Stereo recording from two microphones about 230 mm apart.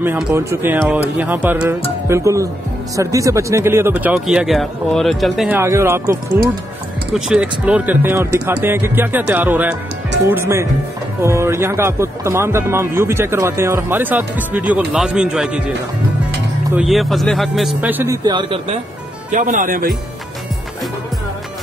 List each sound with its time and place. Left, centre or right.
0.0 s speech: centre
16.7 s speech: centre; by 18.8 s right
19.3 s speech: right